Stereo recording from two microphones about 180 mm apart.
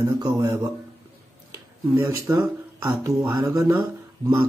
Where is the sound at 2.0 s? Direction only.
15° right (ahead or behind).